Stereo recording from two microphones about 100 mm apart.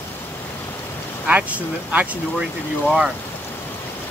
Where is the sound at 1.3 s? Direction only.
15° right (ahead or behind).